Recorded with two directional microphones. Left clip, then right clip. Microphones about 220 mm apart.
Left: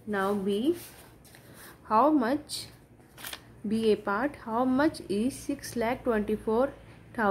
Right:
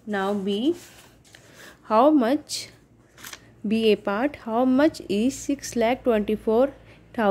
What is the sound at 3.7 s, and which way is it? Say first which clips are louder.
A woman's voice: right 5 dB; 30° right (ahead or behind).